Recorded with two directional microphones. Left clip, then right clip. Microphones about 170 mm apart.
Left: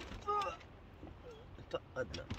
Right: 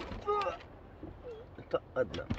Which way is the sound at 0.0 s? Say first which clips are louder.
Right 4 dB; 20° right (ahead or behind).